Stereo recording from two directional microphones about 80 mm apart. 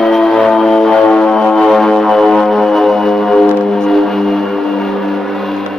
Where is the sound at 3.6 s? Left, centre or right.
Centre.